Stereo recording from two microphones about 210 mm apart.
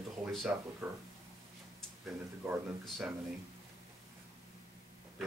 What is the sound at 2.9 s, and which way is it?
Speech, centre (ahead or behind).